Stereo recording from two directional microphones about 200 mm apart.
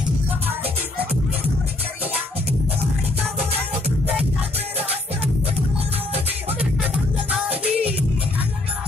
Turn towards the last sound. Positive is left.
turn(degrees=-5)  # may be behind; listen again after turning